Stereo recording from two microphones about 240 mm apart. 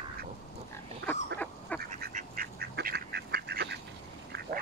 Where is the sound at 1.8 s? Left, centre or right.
Right.